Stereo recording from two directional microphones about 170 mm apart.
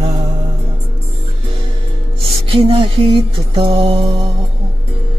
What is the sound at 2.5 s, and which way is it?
Mantra, 30° right (ahead or behind).